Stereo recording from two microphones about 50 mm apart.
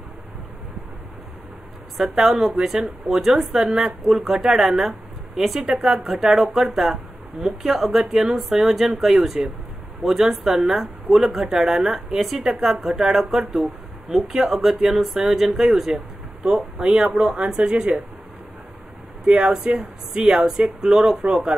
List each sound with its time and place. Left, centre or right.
2.0 s a woman's voice: centre
19.2 s a woman's voice: centre